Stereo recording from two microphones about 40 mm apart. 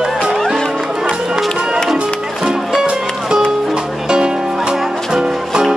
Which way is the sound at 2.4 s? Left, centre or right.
Centre.